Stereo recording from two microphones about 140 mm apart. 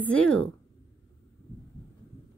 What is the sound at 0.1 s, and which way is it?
Speech, 10° left (ahead or behind).